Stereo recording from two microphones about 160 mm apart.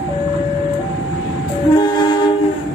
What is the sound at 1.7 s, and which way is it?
Train, 30° left (ahead or behind).